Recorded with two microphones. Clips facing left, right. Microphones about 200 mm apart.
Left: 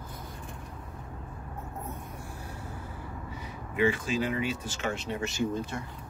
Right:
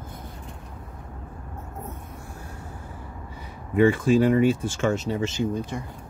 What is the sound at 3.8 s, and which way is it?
Speech, 55° right (ahead or behind).